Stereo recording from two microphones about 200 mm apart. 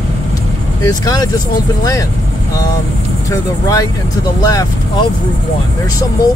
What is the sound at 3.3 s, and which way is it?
Speech, 15° left (ahead or behind).